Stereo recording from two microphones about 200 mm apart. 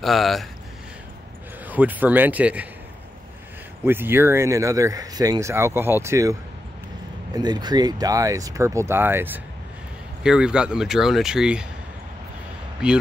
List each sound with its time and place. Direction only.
0.0 s speech: centre (ahead or behind)
1.7 s speech: 10° right (ahead or behind)
3.8 s speech: 10° right (ahead or behind)
7.3 s speech: 20° right (ahead or behind); by 11.6 s 5° right (ahead or behind)
12.8 s speech: 5° right (ahead or behind)